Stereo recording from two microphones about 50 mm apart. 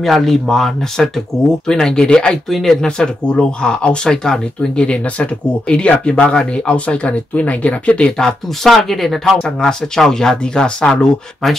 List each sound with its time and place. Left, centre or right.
0.0 s speech: centre
2.5 s speech: centre; by 8.1 s left
8.2 s speech: centre
8.7 s speech: centre